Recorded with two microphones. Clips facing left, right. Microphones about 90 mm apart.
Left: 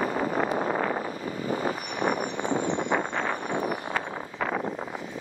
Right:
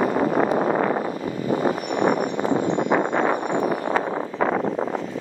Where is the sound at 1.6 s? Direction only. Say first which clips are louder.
Right 7 dB; 40° right (ahead or behind).